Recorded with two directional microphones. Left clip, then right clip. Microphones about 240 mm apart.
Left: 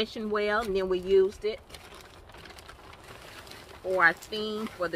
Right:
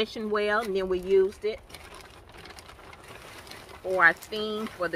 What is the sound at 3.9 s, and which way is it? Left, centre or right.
Speech, centre.